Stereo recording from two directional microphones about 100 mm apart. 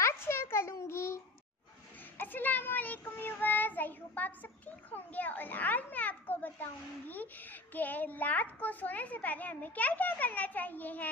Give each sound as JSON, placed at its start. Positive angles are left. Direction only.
{"t": 0.0, "sound": "a sound", "side_deg": 25}
{"t": 2.1, "sound": "child singing", "side_deg": 20}
{"t": 4.9, "sound": "a child's voice", "side_deg": 15}